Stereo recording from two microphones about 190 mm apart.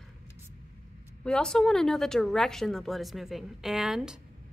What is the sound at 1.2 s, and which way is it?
A woman's voice, 5° left (ahead or behind).